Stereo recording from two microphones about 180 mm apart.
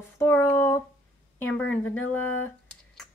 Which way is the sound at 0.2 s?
15° left (ahead or behind).